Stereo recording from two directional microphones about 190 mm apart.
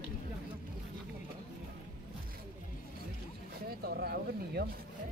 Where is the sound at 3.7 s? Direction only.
55° right (ahead or behind).